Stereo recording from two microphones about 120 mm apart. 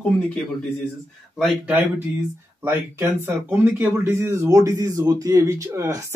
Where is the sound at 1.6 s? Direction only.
15° right (ahead or behind).